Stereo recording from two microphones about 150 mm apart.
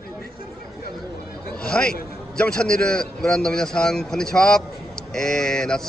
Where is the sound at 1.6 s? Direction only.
5° left (ahead or behind).